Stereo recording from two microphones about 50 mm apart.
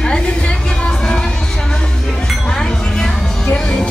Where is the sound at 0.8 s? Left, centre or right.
Centre.